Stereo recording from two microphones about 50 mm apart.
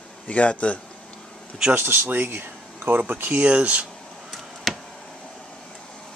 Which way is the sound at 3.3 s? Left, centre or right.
Right.